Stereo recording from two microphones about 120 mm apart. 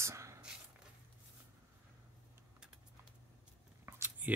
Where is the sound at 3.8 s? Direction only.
20° right (ahead or behind).